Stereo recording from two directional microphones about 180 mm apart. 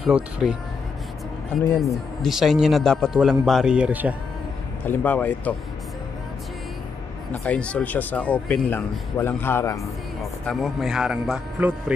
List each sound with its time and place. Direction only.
0.0 s a man's voice: 5° right (ahead or behind)
1.8 s a man's voice: centre (ahead or behind)
4.8 s speech: 10° left (ahead or behind)
7.4 s speech: 5° left (ahead or behind)
10.4 s a man's voice: centre (ahead or behind)